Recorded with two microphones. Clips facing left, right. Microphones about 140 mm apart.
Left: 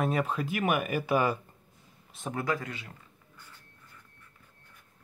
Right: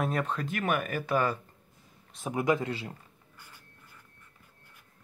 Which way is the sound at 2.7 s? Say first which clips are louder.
Right 6 dB; 30° right (ahead or behind).